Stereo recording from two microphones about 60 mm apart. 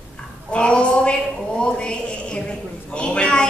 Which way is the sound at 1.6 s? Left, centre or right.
Centre.